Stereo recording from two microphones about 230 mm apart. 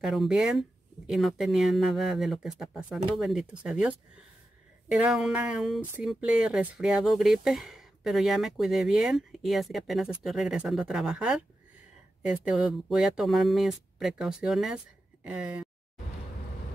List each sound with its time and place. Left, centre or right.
0.0 s speech: centre
4.9 s speech: centre